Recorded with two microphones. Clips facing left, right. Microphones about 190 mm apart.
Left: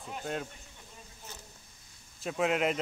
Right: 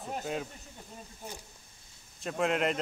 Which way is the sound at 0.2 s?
5° right (ahead or behind).